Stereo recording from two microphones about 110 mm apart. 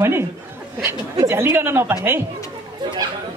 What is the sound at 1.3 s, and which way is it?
Speech, 20° right (ahead or behind).